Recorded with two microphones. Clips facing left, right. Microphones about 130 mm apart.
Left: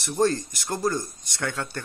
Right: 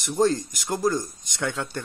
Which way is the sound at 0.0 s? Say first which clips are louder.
Right 1 dB; 15° right (ahead or behind).